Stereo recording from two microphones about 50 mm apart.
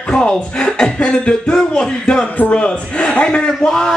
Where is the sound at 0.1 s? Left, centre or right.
Centre.